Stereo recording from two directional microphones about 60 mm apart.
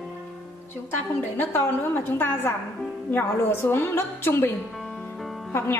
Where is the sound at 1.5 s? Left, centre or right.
Left.